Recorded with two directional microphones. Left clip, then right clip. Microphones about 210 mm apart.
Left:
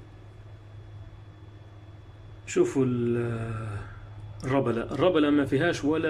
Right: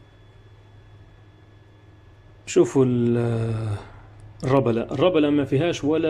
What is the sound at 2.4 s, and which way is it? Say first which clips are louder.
A man's voice: right 6 dB; 20° right (ahead or behind).